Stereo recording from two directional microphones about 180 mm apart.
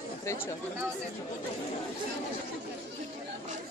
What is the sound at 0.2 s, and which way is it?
Speech, 15° left (ahead or behind).